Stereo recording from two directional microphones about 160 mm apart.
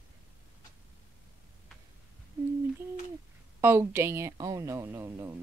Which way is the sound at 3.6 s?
15° right (ahead or behind).